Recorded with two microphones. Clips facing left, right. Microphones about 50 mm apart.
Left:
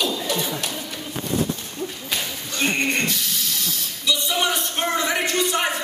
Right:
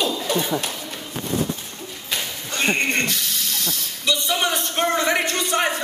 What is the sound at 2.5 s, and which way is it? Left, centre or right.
Speech, right.